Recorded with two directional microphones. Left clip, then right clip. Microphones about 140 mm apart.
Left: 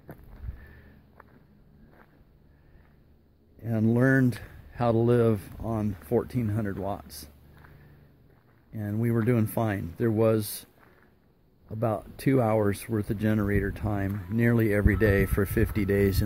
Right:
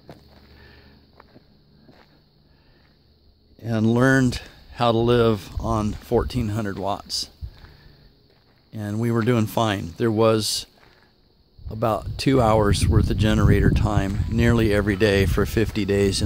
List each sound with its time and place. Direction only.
3.5 s speech: 25° right (ahead or behind)
5.6 s speech: 30° right (ahead or behind)
8.7 s speech: 20° right (ahead or behind)